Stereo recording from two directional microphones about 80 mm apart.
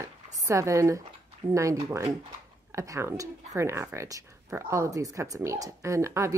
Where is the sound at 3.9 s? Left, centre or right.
Right.